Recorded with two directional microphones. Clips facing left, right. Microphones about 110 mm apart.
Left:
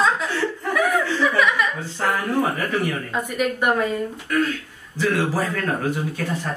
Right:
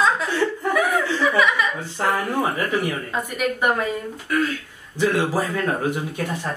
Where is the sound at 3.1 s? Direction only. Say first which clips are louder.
Left 1 dB; centre (ahead or behind).